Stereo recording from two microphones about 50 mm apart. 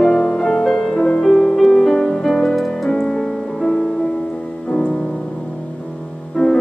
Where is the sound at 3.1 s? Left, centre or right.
Centre.